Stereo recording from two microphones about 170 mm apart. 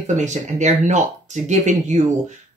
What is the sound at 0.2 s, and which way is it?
Speech, 45° right (ahead or behind).